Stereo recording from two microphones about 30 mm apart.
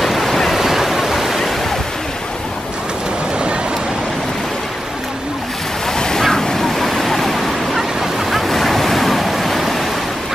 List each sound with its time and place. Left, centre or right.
0.0 s waves: centre
5.9 s waves: left
6.4 s vehicle: centre
7.7 s waves: centre